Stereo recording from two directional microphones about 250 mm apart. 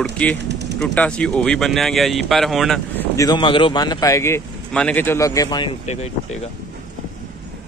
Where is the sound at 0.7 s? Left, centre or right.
Centre.